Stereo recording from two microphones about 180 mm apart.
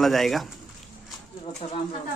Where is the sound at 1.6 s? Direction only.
40° left (ahead or behind).